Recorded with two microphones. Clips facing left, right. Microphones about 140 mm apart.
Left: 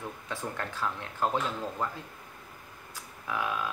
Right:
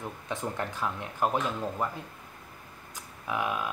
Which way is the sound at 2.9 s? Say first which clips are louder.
Right 2 dB; 20° right (ahead or behind).